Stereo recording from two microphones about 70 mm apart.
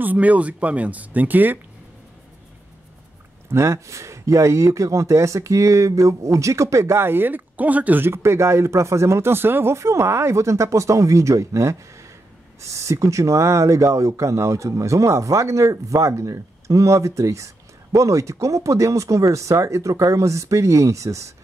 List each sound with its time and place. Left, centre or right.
0.0 s speech: right
3.4 s speech: right
8.1 s speech: right